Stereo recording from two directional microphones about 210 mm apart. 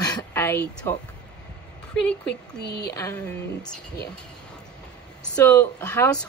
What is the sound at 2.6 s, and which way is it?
Speech, 50° left (ahead or behind).